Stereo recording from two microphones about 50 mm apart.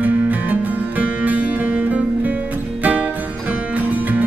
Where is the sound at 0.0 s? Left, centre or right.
Right.